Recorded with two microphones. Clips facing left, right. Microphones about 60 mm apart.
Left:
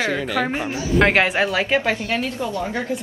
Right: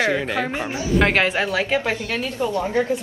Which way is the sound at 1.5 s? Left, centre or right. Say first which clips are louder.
Left 1 dB; left.